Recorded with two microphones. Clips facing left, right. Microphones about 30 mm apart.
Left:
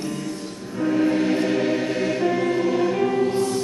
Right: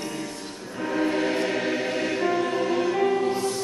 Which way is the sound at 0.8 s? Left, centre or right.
Centre.